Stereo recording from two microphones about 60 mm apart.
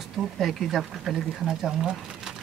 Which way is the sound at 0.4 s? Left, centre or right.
Centre.